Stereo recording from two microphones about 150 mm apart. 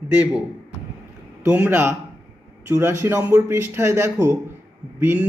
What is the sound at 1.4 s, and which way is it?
A man's voice, 10° right (ahead or behind).